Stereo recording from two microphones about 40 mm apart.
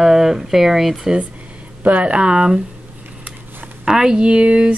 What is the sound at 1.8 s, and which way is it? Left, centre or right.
Speech, right.